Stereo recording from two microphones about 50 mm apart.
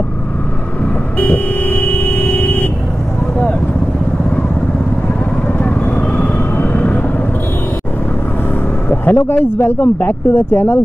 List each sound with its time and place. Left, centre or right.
1.2 s vehicle: left
5.9 s vehicle: left
6.6 s vehicle: left
9.0 s speech: left